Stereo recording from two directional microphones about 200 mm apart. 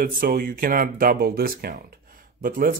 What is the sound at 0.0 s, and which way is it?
Speech, 45° right (ahead or behind).